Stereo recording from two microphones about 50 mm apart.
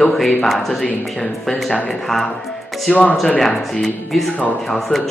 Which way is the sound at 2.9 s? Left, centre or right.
Left.